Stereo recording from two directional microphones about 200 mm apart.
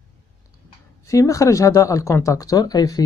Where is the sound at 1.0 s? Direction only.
15° left (ahead or behind).